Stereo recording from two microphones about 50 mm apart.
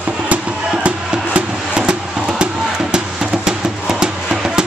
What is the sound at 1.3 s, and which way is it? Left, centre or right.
Music, centre.